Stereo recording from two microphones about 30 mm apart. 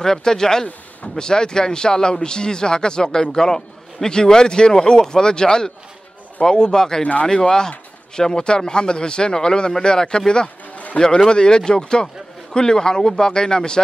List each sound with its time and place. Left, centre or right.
0.0 s speech: centre